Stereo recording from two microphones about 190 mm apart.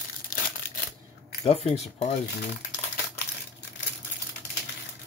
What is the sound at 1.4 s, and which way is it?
Speech, 30° left (ahead or behind).